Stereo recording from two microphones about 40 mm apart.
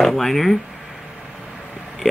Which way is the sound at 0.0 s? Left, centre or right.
Centre.